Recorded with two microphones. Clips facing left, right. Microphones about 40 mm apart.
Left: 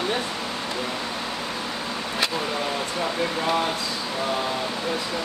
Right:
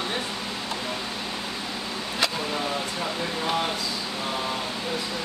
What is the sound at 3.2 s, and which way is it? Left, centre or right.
Speech, left.